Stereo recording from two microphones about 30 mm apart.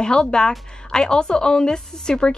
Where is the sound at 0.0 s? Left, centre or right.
Left.